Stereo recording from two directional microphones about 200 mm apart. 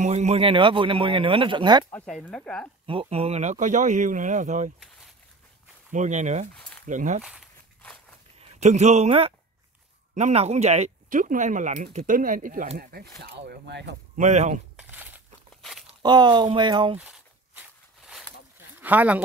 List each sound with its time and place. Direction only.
0.0 s speech: 35° right (ahead or behind)
1.9 s speech: 5° left (ahead or behind)
2.9 s speech: 30° right (ahead or behind)
5.9 s speech: 35° right (ahead or behind)
8.4 s speech: 35° right (ahead or behind); by 13.9 s 60° right (ahead or behind)
14.1 s speech: 35° right (ahead or behind)
14.8 s crumpling: 10° right (ahead or behind)
15.6 s a sound: centre (ahead or behind)
16.0 s speech: 20° right (ahead or behind)
17.0 s walk: 5° right (ahead or behind)
18.8 s speech: 10° right (ahead or behind)